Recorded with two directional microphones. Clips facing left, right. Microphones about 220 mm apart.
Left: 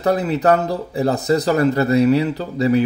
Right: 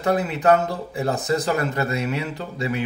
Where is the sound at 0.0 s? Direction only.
35° left (ahead or behind).